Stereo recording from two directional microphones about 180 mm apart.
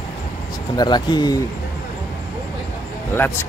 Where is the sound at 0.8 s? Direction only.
25° left (ahead or behind).